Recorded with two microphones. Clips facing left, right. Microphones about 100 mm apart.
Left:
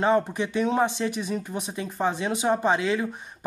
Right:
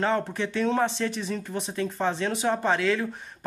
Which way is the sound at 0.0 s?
15° left (ahead or behind).